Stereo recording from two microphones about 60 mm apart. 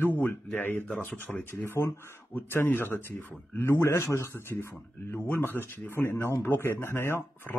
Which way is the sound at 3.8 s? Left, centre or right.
Left.